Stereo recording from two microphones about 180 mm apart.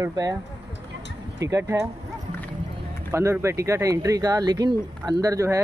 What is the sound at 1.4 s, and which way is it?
Speech, 20° right (ahead or behind).